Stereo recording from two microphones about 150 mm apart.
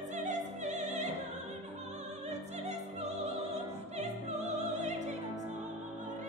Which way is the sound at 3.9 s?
50° right (ahead or behind).